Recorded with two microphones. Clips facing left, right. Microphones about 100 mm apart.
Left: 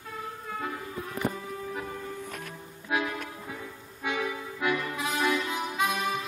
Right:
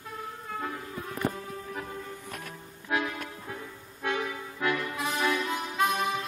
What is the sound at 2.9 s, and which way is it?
Music, 5° left (ahead or behind).